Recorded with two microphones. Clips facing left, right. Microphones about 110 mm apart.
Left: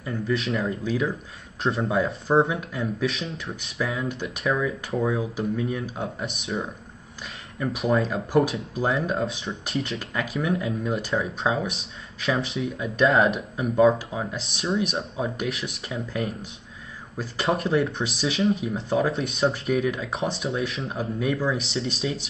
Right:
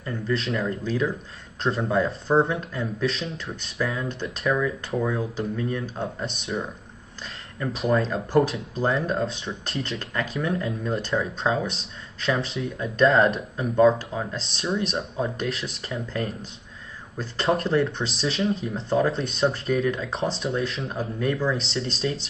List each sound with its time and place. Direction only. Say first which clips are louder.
0.0 s speech: left 1 dB; 5° left (ahead or behind)